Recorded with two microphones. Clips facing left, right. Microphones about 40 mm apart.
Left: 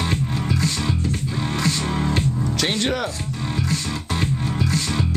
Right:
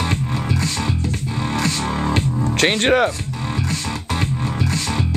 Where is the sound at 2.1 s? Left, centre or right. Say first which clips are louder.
Right 2 dB; right.